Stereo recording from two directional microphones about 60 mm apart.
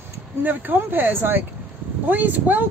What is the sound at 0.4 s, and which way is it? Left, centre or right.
Speech, right.